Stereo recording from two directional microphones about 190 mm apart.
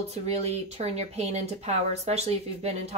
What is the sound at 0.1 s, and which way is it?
Speech, 35° right (ahead or behind).